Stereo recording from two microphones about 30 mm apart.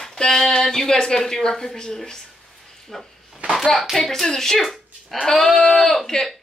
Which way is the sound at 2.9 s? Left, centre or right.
Centre.